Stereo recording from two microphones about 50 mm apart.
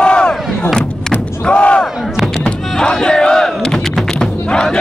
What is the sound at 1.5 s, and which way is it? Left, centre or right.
Battle cry, left.